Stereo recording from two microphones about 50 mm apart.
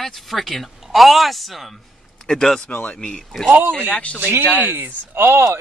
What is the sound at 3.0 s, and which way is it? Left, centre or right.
Speech, centre.